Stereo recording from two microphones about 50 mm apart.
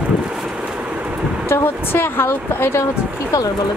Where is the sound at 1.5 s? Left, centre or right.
Left.